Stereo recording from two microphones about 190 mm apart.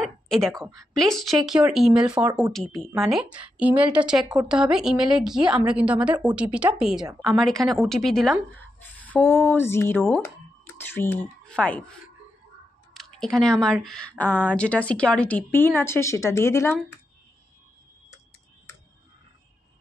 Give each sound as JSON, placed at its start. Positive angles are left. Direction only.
{"t": 0.0, "sound": "a sound", "side_deg": 0}
{"t": 0.5, "sound": "a woman's voice", "side_deg": -15}
{"t": 0.9, "sound": "a woman's voice", "side_deg": 0}